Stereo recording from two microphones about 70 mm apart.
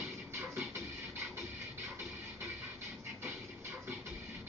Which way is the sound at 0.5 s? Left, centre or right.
Right.